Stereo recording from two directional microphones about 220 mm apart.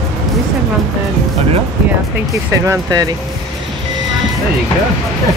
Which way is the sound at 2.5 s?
15° right (ahead or behind).